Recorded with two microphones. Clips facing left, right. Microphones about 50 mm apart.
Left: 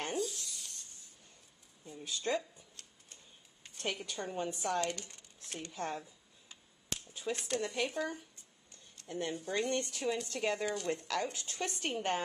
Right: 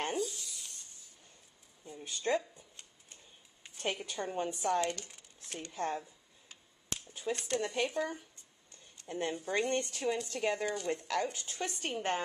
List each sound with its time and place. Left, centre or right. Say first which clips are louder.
0.0 s a sound: right 2 dB; centre
2.3 s speech: right 3 dB; centre
2.7 s tick-tock: right 1 dB; centre
3.6 s speech: right 2 dB; centre
5.0 s a sound: even; centre
5.8 s a woman's voice: right 4 dB; centre
7.2 s a woman's voice: right 2 dB; centre
7.5 s speech: right 2 dB; centre
7.8 s a woman's voice: right 2 dB; centre
9.0 s speech: right 2 dB; right
9.5 s speech: right 2 dB; centre
9.8 s a woman's voice: right 1 dB; centre